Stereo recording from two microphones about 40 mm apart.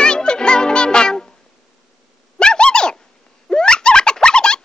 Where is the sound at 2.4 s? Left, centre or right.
Left.